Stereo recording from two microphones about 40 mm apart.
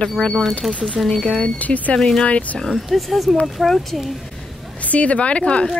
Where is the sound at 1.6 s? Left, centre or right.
Left.